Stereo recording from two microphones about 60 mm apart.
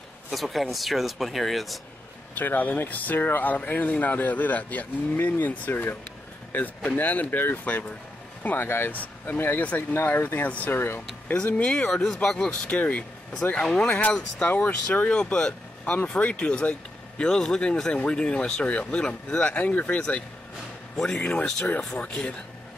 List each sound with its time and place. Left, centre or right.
0.3 s speech: centre
2.3 s speech: left
8.5 s speech: left
8.9 s speech: left
9.4 s speech: left
10.7 s speech: left
11.3 s speech: centre
11.9 s speech: centre
12.6 s speech: left